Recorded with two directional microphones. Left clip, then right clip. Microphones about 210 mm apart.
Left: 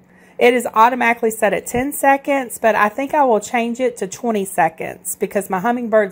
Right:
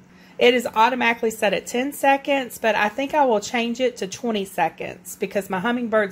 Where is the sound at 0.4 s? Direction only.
15° left (ahead or behind).